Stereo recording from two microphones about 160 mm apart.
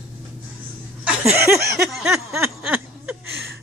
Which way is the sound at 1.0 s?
10° right (ahead or behind).